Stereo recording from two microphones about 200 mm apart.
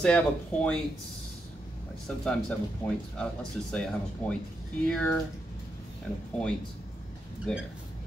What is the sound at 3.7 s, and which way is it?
Speech, 5° left (ahead or behind).